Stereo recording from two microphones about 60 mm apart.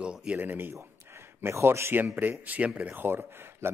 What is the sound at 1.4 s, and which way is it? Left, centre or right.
Speech, right.